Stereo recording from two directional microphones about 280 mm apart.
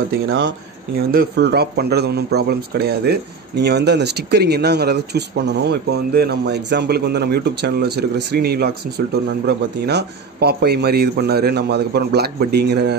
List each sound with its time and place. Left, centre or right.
0.3 s speech: right